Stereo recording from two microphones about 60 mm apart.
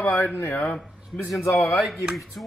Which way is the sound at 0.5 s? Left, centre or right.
Left.